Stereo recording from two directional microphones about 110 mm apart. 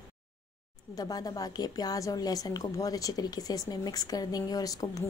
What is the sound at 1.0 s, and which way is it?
A woman's voice, 35° left (ahead or behind).